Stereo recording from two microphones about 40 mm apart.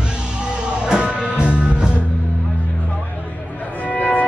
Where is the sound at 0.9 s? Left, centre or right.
Right.